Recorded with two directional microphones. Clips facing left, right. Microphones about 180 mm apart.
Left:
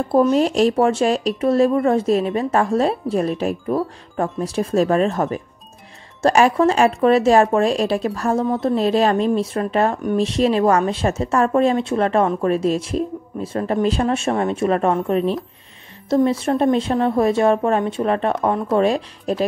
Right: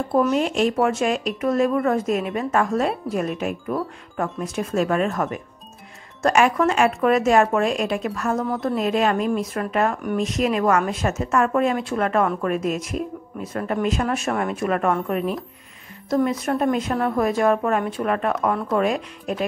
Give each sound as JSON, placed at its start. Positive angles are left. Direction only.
{"t": 0.1, "sound": "a woman's voice", "side_deg": 35}